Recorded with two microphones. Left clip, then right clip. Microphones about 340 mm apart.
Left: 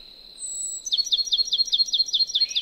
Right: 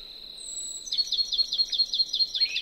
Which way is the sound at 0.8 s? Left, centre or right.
Left.